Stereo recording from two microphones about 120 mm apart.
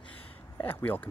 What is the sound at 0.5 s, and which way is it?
Speech, 15° left (ahead or behind).